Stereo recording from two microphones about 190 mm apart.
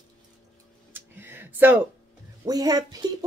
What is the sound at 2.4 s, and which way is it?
Speech, 20° right (ahead or behind).